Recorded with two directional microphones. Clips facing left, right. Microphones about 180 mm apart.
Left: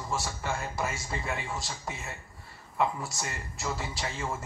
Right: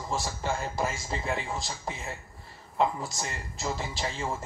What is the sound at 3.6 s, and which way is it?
Speech, 20° right (ahead or behind).